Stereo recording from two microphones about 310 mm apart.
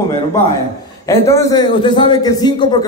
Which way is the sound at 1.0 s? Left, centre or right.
Centre.